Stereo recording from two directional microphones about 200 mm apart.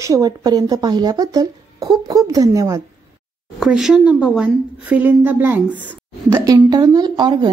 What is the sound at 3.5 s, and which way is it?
A woman's voice, centre (ahead or behind).